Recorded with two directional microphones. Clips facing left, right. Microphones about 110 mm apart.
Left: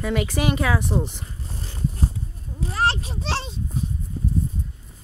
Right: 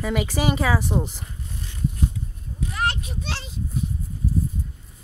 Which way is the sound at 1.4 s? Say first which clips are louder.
Even; 35° left (ahead or behind).